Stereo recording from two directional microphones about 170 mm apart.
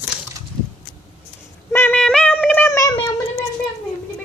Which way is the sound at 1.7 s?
10° left (ahead or behind).